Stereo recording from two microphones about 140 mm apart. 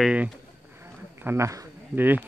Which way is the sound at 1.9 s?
15° right (ahead or behind).